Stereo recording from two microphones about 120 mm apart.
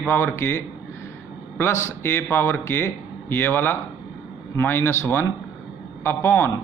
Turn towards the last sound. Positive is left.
turn(degrees=15)  # may be behind; listen again after turning